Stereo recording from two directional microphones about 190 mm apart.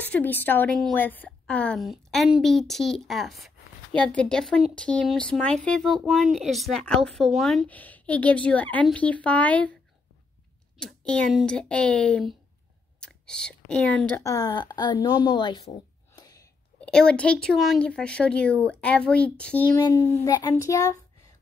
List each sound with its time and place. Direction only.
0.0 s a woman's voice: 10° left (ahead or behind)
10.8 s a woman's voice: 5° left (ahead or behind); by 15.7 s 25° left (ahead or behind)
16.2 s a sound: 20° left (ahead or behind)
16.8 s a woman's voice: 5° left (ahead or behind)